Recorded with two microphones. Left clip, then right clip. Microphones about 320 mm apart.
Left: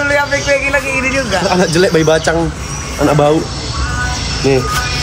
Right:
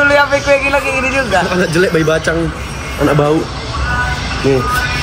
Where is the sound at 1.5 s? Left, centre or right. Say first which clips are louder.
Left 1 dB; left.